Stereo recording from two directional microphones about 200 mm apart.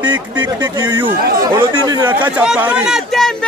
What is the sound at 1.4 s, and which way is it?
Chatter, 15° right (ahead or behind).